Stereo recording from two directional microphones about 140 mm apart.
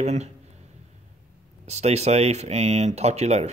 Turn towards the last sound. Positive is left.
turn(degrees=-55)  # may be behind; listen again after turning